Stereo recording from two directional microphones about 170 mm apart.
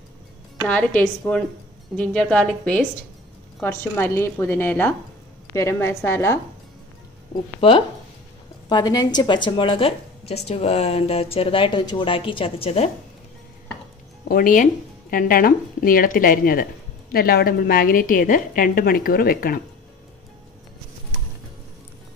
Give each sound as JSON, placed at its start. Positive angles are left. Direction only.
{"t": 0.7, "sound": "a woman's voice", "side_deg": 10}
{"t": 8.6, "sound": "a woman's voice", "side_deg": 25}
{"t": 14.3, "sound": "a woman's voice", "side_deg": 50}